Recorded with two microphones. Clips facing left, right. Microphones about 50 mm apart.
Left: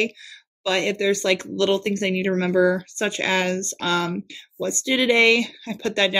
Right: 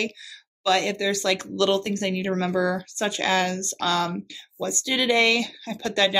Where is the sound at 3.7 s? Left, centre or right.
Left.